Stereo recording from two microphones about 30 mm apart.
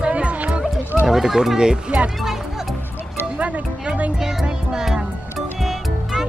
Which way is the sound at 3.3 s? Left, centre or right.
Right.